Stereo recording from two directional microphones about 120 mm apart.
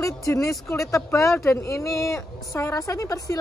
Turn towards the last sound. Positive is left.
turn(degrees=25)  # may be behind; listen again after turning